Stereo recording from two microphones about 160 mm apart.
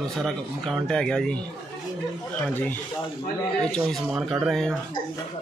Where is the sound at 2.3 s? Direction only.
10° left (ahead or behind).